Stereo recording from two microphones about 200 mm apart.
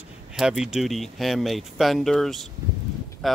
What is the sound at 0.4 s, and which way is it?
Speech, 5° right (ahead or behind).